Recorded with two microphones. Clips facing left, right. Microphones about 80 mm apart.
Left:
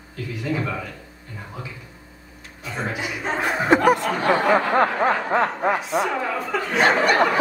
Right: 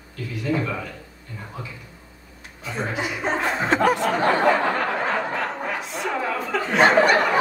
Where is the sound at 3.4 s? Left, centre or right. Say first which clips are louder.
Left 4 dB; centre.